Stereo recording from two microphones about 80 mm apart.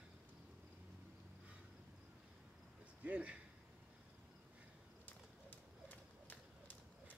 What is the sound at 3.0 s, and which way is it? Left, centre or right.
Speech, centre.